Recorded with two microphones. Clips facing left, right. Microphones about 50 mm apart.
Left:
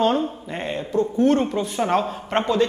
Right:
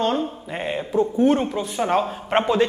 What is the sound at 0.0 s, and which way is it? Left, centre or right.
Speech, centre.